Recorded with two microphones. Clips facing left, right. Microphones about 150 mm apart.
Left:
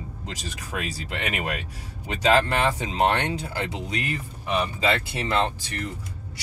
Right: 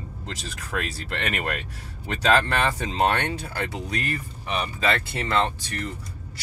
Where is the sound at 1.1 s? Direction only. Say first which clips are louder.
Even; 10° left (ahead or behind).